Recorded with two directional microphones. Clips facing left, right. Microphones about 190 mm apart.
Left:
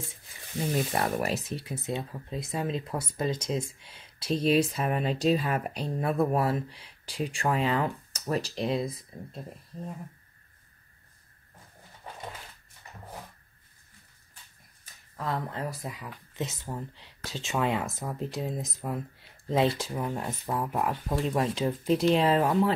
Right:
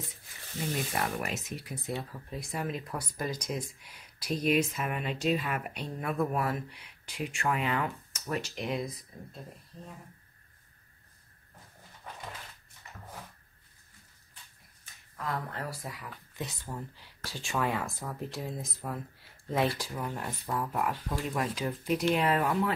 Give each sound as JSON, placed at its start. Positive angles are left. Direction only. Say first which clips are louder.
{"t": 1.2, "sound": "speech", "louder": "left 6 dB", "side_deg": 35}
{"t": 15.1, "sound": "speech", "louder": "left 3 dB", "side_deg": 25}